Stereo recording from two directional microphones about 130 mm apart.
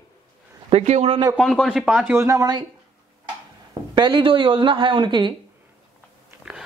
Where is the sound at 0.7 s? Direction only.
55° right (ahead or behind).